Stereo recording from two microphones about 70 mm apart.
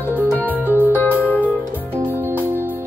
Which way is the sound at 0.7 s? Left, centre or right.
Left.